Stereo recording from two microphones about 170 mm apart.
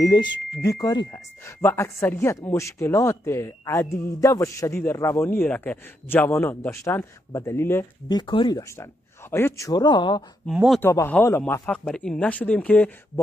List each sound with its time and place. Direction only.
0.0 s speech: 25° left (ahead or behind)
8.1 s speech: 25° left (ahead or behind)
10.4 s speech: centre (ahead or behind)
10.8 s speech: 15° left (ahead or behind)